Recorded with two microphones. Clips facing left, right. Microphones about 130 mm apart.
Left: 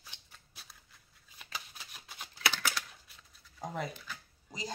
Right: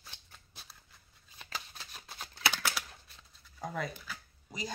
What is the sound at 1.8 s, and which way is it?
Shuffling cards, 30° right (ahead or behind).